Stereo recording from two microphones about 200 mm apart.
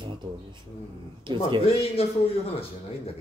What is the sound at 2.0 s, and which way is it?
Speech, 30° left (ahead or behind).